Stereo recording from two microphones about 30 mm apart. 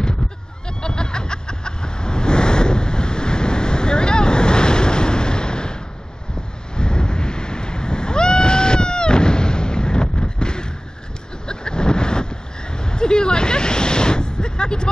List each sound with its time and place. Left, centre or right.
0.7 s vehicle: left
6.8 s a sound: left
11.4 s vehicle: left